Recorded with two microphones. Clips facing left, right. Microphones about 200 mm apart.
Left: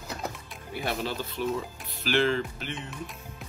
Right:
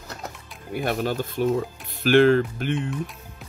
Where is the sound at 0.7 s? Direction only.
50° right (ahead or behind).